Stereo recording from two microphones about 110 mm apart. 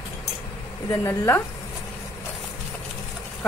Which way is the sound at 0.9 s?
20° left (ahead or behind).